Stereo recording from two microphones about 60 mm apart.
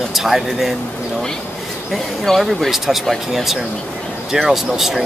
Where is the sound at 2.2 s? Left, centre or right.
Centre.